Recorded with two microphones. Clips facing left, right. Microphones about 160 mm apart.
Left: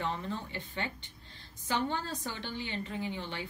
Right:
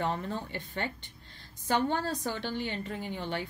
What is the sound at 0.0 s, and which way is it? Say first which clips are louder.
Speech: right 3 dB; 50° right (ahead or behind).